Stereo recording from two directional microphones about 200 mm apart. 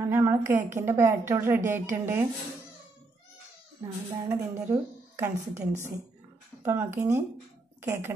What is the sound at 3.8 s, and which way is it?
A woman's voice, 15° right (ahead or behind).